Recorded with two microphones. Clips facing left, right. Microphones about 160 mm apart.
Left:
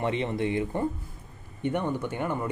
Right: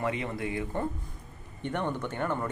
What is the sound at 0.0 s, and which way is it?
Speech, 25° left (ahead or behind).